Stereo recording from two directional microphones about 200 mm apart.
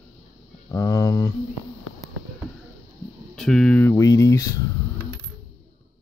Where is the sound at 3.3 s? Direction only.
Centre (ahead or behind).